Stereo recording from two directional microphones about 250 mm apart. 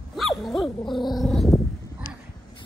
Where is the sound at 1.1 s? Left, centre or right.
Centre.